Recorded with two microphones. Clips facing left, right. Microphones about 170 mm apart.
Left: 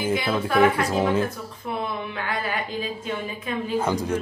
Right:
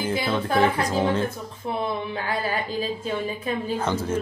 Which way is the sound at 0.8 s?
10° left (ahead or behind).